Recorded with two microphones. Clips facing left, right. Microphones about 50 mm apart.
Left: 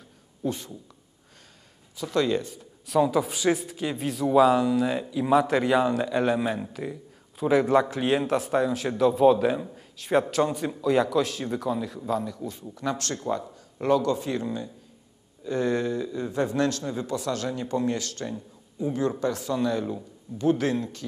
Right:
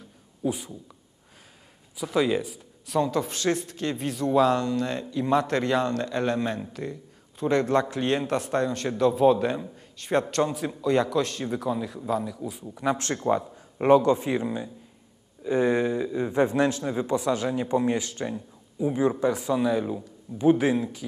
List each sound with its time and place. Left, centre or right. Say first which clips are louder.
0.4 s speech: right 1 dB; centre
2.0 s speech: right 1 dB; centre
12.8 s speech: right 4 dB; right